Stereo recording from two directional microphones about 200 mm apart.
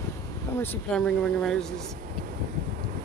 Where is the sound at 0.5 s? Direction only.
5° left (ahead or behind).